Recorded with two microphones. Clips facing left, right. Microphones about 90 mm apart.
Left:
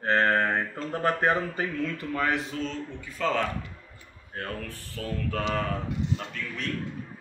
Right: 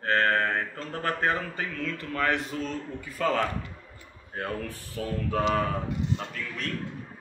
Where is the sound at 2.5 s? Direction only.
5° right (ahead or behind).